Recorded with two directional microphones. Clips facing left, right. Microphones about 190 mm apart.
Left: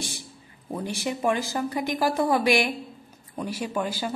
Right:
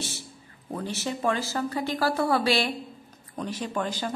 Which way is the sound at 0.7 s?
15° left (ahead or behind).